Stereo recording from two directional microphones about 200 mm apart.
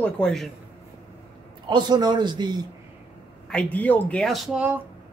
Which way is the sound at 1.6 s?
20° right (ahead or behind).